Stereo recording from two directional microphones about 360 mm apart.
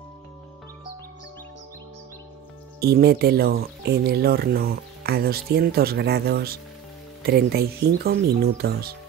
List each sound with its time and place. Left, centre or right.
2.8 s speech: right